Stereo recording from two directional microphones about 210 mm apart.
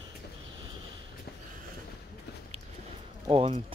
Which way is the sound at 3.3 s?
25° right (ahead or behind).